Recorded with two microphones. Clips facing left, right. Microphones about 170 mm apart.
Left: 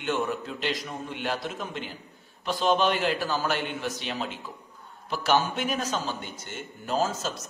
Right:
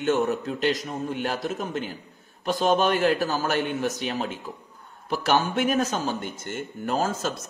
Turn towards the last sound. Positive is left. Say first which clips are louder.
# right 1 dB
turn(degrees=-55)  # may be behind; listen again after turning